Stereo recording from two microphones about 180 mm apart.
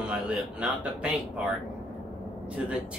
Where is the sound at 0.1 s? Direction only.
5° right (ahead or behind).